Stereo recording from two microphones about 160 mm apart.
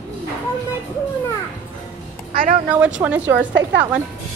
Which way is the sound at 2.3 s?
60° right (ahead or behind).